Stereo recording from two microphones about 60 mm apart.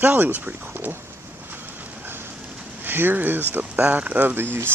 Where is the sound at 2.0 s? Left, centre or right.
Right.